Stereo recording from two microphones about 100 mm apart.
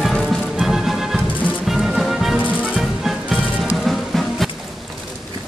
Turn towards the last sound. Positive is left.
turn(degrees=0)  # may be behind; listen again after turning